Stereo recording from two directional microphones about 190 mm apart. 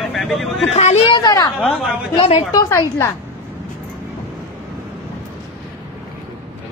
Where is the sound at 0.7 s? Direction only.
40° left (ahead or behind).